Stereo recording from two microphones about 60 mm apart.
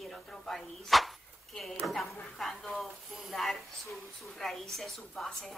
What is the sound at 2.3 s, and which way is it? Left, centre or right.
A woman's voice, centre.